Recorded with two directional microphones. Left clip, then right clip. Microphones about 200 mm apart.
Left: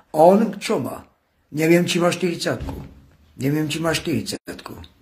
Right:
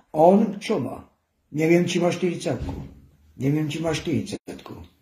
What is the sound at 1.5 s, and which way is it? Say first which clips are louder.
Speech: left 3 dB; 5° left (ahead or behind).